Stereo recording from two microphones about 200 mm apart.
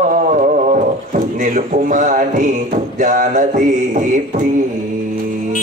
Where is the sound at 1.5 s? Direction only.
40° right (ahead or behind).